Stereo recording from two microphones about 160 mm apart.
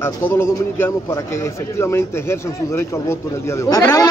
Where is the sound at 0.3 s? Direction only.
15° left (ahead or behind).